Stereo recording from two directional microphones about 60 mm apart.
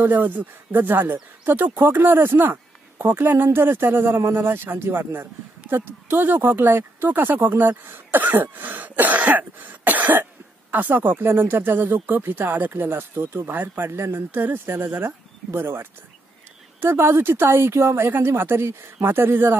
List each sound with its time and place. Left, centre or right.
0.0 s speech: right